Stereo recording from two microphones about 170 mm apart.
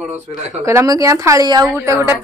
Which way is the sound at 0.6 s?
15° right (ahead or behind).